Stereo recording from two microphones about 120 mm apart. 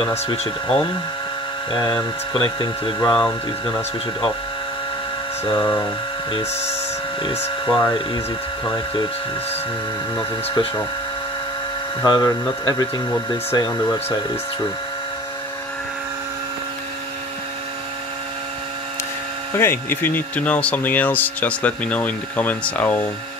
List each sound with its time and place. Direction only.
0.3 s speech: 50° left (ahead or behind)
1.7 s speech: 35° left (ahead or behind)
5.5 s speech: 35° left (ahead or behind)
7.6 s speech: 35° left (ahead or behind)
12.0 s speech: 30° left (ahead or behind)
19.5 s speech: 20° left (ahead or behind)